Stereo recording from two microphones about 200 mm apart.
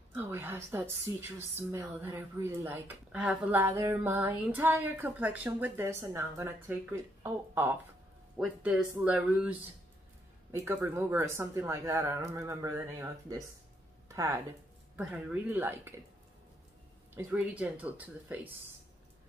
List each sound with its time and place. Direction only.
0.2 s a woman's voice: 10° right (ahead or behind)
14.0 s music: 15° right (ahead or behind)
15.0 s a woman's voice: 5° right (ahead or behind)
17.1 s a woman's voice: 5° right (ahead or behind)